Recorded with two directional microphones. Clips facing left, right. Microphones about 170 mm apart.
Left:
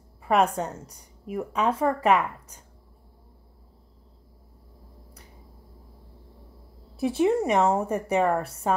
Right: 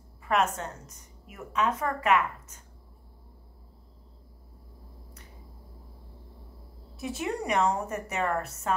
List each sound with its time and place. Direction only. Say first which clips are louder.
0.3 s a woman's voice: left 5 dB; 35° left (ahead or behind)
7.0 s a woman's voice: left 10 dB; 30° left (ahead or behind)